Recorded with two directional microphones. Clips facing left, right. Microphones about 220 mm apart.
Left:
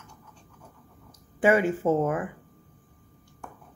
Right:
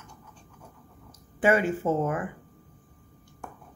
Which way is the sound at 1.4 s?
15° left (ahead or behind).